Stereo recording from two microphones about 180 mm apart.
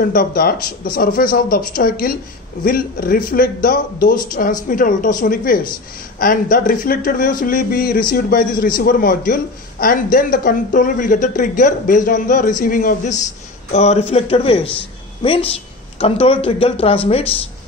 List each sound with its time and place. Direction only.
0.0 s a man's voice: 55° left (ahead or behind); by 17.3 s 30° left (ahead or behind)